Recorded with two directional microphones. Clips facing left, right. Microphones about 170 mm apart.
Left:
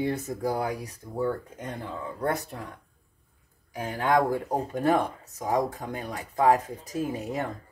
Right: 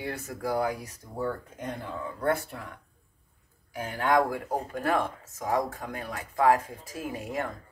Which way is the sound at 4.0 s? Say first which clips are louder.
Left 1 dB; 20° left (ahead or behind).